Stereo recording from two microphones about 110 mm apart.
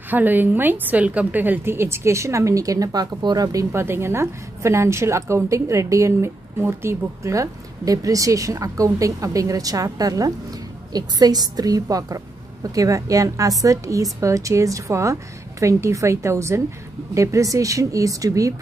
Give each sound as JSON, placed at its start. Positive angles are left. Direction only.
{"t": 0.1, "sound": "a woman's voice", "side_deg": -15}